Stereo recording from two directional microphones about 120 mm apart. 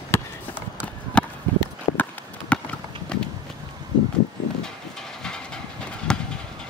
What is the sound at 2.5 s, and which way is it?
Run, 10° left (ahead or behind).